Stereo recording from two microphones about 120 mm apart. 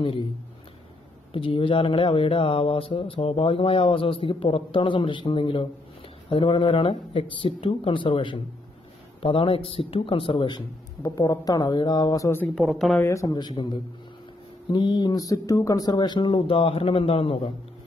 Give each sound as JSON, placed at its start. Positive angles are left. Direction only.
{"t": 1.3, "sound": "speech", "side_deg": 45}
{"t": 12.5, "sound": "speech", "side_deg": 0}
{"t": 12.9, "sound": "speech", "side_deg": 25}
{"t": 14.7, "sound": "speech", "side_deg": 40}